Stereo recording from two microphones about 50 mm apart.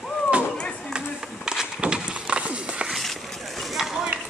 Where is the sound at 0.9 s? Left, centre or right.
Centre.